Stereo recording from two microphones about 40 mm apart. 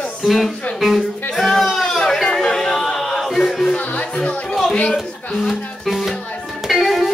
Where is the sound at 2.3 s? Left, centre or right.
Centre.